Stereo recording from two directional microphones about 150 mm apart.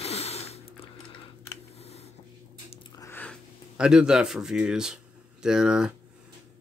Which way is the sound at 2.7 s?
30° left (ahead or behind).